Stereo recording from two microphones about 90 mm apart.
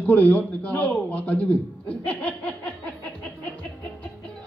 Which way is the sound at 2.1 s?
15° left (ahead or behind).